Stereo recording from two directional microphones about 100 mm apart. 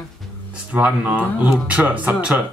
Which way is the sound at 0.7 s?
10° right (ahead or behind).